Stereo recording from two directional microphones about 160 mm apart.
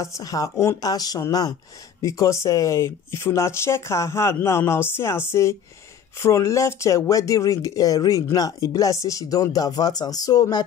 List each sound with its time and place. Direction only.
0.0 s speech: 20° left (ahead or behind)